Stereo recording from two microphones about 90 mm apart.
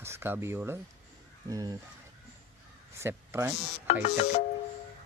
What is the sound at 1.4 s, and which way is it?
Speech, 40° right (ahead or behind).